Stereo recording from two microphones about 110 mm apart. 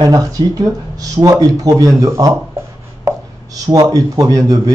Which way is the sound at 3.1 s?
25° right (ahead or behind).